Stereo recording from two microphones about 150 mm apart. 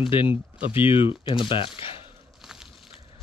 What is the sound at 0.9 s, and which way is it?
Speech, 35° left (ahead or behind).